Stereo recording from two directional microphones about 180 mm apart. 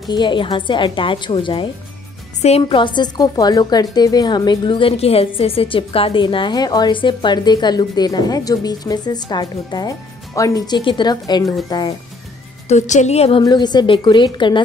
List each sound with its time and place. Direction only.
0.1 s a woman's voice: 25° left (ahead or behind)
12.6 s a woman's voice: 40° left (ahead or behind)
13.4 s a woman's voice: 25° left (ahead or behind)